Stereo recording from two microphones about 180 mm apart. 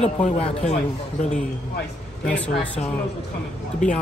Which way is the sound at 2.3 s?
5° left (ahead or behind).